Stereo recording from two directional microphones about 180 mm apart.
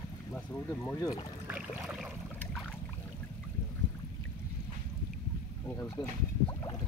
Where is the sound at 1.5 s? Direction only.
5° right (ahead or behind).